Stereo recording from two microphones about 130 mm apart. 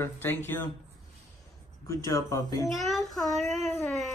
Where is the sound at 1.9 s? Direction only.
25° left (ahead or behind).